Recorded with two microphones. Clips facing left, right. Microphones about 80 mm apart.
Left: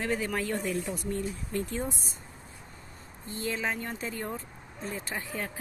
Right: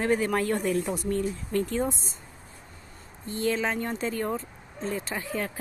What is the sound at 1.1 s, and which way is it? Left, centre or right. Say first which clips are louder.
Speech: right 6 dB; right.